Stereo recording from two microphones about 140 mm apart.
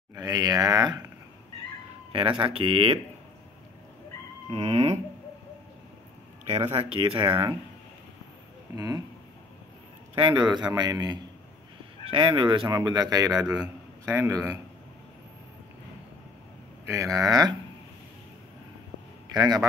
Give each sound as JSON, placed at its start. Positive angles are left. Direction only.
{"t": 0.1, "sound": "speech", "side_deg": -25}
{"t": 2.1, "sound": "speech", "side_deg": -40}
{"t": 4.5, "sound": "a sound", "side_deg": -45}
{"t": 6.4, "sound": "speech", "side_deg": -45}
{"t": 8.7, "sound": "a man's voice", "side_deg": -25}
{"t": 10.1, "sound": "a man's voice", "side_deg": -35}
{"t": 16.8, "sound": "a man's voice", "side_deg": -20}
{"t": 19.3, "sound": "a man's voice", "side_deg": -30}